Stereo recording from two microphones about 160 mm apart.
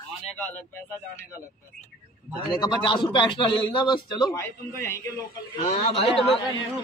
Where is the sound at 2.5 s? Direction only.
25° left (ahead or behind).